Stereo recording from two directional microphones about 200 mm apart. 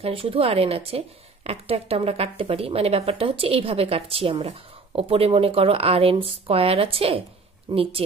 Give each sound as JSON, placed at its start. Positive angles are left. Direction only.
{"t": 0.0, "sound": "speech", "side_deg": -30}